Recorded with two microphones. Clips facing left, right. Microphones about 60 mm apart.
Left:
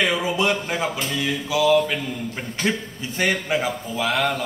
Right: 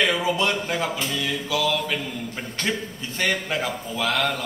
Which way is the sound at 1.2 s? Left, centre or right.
Centre.